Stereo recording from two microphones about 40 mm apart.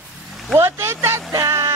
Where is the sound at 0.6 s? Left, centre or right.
Right.